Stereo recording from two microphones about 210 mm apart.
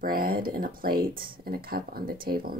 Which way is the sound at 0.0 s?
45° right (ahead or behind).